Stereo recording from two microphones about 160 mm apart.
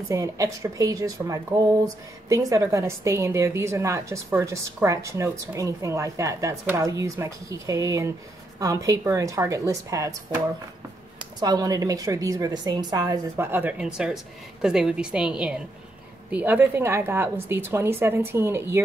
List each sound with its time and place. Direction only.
0.1 s a woman's voice: 20° right (ahead or behind)
11.1 s speech: 25° right (ahead or behind)